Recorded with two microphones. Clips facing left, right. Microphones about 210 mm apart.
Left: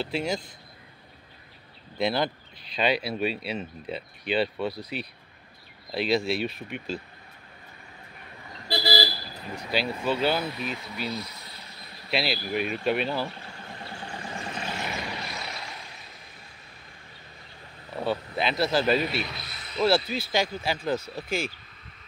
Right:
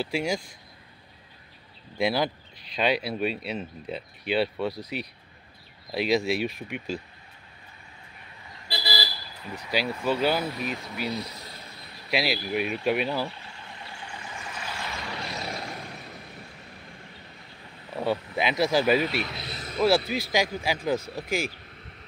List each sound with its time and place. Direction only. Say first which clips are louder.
0.0 s speech: right 1 dB; 10° right (ahead or behind)
2.0 s speech: right 1 dB; 10° right (ahead or behind)
3.0 s speech: even; 5° left (ahead or behind)
4.2 s speech: right 1 dB; 10° right (ahead or behind)
5.9 s speech: right 1 dB; 10° right (ahead or behind)
8.6 s vehicle: left 7 dB; 45° left (ahead or behind)
9.7 s speech: right 1 dB; 10° right (ahead or behind)
13.3 s vehicle: left 3 dB; 45° left (ahead or behind); by 15.0 s 25° left (ahead or behind)
15.4 s vehicle: right 5 dB; 45° right (ahead or behind)
18.0 s speech: right 1 dB; 10° right (ahead or behind)
19.4 s a sound: right 6 dB; 40° right (ahead or behind)
20.1 s speech: right 1 dB; 10° right (ahead or behind)